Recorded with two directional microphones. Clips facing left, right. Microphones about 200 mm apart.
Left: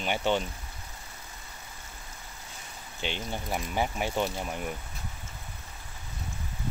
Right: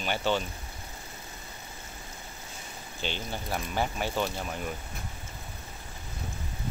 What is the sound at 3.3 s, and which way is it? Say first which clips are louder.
Speech: left 1 dB; 15° left (ahead or behind).